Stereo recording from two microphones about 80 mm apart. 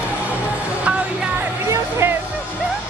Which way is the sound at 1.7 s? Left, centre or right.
Right.